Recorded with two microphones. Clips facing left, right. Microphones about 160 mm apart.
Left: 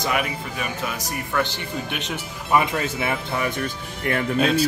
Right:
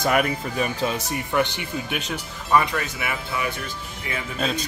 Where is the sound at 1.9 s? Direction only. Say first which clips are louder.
Right 1 dB; centre (ahead or behind).